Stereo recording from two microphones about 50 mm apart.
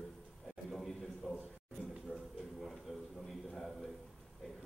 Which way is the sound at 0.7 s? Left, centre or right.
Centre.